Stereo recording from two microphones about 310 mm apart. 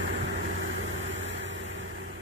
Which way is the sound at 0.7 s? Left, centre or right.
Right.